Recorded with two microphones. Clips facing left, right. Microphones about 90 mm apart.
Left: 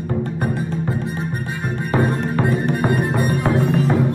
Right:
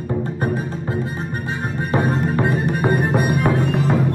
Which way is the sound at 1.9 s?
15° right (ahead or behind).